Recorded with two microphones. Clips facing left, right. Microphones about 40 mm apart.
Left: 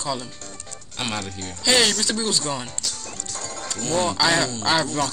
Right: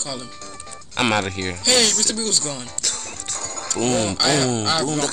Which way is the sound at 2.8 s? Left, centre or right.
Right.